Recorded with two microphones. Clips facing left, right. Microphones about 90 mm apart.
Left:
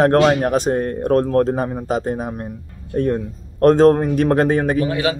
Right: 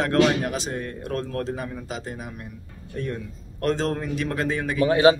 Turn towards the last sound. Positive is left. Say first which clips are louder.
# right 4 dB
turn(degrees=-30)  # may be behind; listen again after turning